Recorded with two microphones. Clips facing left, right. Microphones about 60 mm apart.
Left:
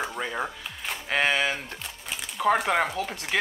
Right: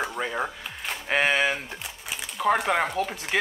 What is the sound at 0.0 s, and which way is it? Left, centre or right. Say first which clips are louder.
Speech: right 2 dB; centre.